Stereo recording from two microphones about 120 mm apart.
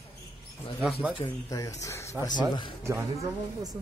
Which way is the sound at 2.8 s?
25° right (ahead or behind).